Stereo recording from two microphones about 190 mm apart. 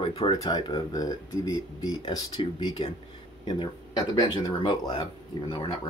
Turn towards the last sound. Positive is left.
turn(degrees=25)  # may be behind; listen again after turning